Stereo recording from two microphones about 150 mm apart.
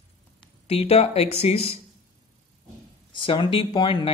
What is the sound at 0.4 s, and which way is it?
Speech, 40° left (ahead or behind).